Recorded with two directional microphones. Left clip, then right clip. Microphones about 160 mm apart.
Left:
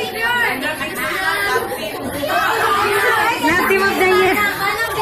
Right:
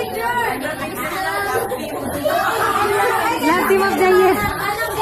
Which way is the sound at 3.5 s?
15° right (ahead or behind).